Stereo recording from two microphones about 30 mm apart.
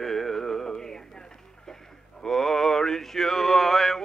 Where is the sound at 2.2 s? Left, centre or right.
Centre.